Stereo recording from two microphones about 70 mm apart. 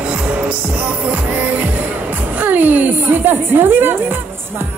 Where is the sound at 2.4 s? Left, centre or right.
Right.